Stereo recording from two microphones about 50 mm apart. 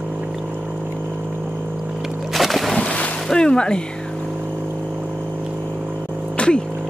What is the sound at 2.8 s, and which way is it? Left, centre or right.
Boat, left.